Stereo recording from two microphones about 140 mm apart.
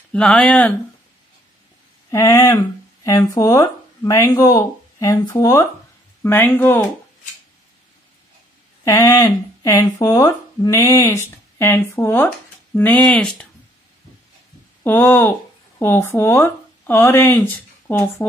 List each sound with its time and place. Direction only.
0.1 s speech: 5° left (ahead or behind)
2.0 s speech: 20° left (ahead or behind)
8.8 s speech: 25° left (ahead or behind); by 13.5 s 5° left (ahead or behind)
14.8 s speech: 15° left (ahead or behind)